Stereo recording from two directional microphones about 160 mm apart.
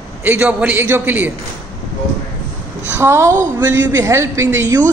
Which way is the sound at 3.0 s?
15° right (ahead or behind).